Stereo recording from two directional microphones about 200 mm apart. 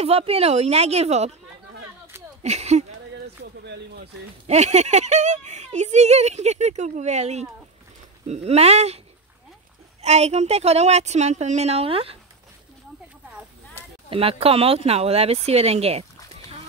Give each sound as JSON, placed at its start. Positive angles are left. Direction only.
{"t": 0.0, "sound": "speech", "side_deg": -30}
{"t": 2.4, "sound": "speech", "side_deg": -35}
{"t": 4.5, "sound": "speech", "side_deg": -35}
{"t": 10.0, "sound": "speech", "side_deg": -35}
{"t": 14.1, "sound": "speech", "side_deg": -30}